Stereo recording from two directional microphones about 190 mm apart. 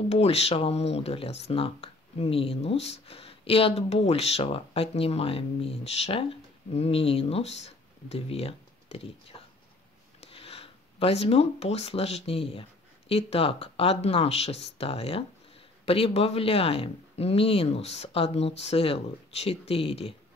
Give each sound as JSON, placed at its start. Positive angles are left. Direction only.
{"t": 0.1, "sound": "speech", "side_deg": 35}